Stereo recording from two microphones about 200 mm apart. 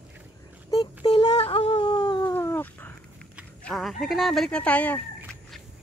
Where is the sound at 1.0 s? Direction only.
20° left (ahead or behind).